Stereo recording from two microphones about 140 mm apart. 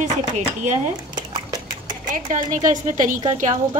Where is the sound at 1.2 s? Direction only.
30° right (ahead or behind).